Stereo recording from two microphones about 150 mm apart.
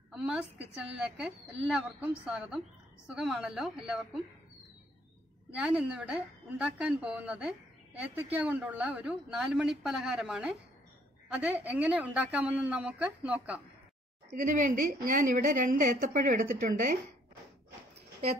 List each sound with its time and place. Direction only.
0.1 s a woman's voice: 5° right (ahead or behind)
5.6 s a woman's voice: 5° right (ahead or behind)
14.3 s a woman's voice: 65° right (ahead or behind)